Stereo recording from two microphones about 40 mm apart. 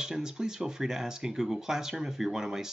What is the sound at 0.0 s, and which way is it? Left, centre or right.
Speech, centre.